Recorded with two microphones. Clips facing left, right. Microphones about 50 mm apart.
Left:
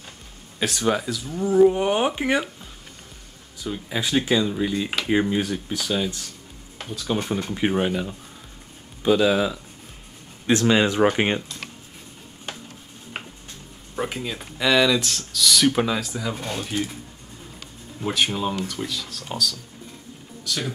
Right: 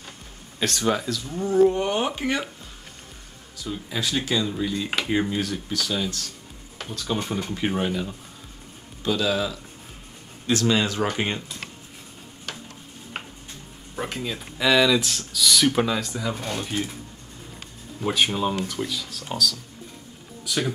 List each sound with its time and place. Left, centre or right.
0.6 s speech: centre
3.6 s speech: centre
6.8 s speech: centre; by 11.4 s left
13.2 s a sound: centre
13.9 s speech: centre
18.0 s speech: centre
20.4 s speech: centre